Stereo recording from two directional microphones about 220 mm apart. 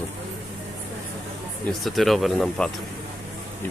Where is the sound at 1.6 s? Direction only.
Centre (ahead or behind).